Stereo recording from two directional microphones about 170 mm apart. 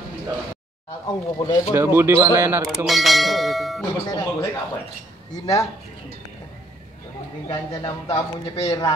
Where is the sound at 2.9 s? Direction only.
Centre (ahead or behind).